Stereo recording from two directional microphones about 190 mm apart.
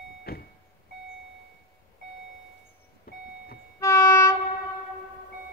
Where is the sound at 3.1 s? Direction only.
50° left (ahead or behind).